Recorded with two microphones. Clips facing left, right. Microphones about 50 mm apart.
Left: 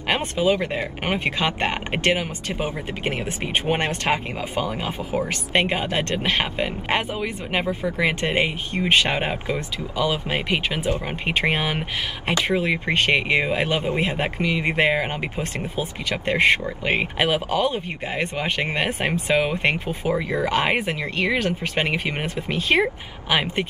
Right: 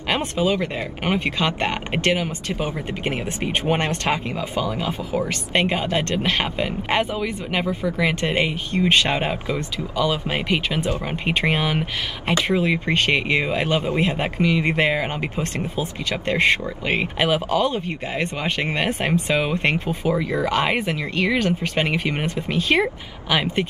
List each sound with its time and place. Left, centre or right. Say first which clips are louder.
0.1 s speech: even; centre
3.3 s speech: right 2 dB; centre
9.1 s speech: right 1 dB; centre
15.3 s speech: right 2 dB; left; by 17.6 s centre
17.6 s speech: right 1 dB; centre